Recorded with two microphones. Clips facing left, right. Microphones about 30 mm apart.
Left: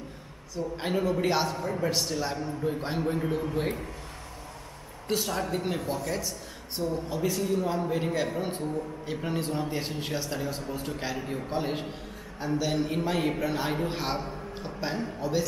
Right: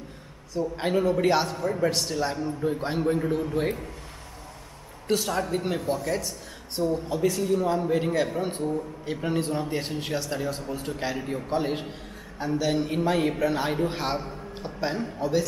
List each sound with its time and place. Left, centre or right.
0.7 s a man's voice: centre
5.0 s a man's voice: centre